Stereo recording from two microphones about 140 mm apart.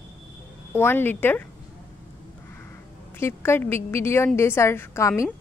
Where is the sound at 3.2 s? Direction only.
15° left (ahead or behind).